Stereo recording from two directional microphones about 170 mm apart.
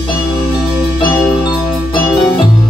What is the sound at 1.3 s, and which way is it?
Music, 25° left (ahead or behind).